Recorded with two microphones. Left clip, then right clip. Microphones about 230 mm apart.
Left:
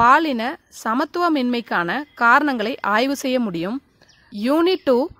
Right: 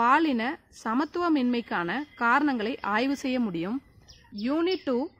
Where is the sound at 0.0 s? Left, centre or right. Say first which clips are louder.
Left 8 dB; left.